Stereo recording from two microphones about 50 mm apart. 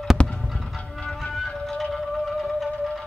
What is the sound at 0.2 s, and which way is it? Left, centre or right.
Fireworks, left.